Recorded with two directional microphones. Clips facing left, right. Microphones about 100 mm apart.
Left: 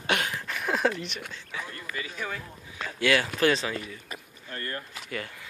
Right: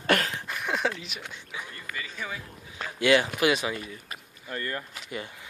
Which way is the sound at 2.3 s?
10° right (ahead or behind).